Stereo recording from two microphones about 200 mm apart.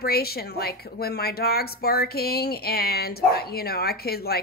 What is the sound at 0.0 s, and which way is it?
Speech, 50° left (ahead or behind).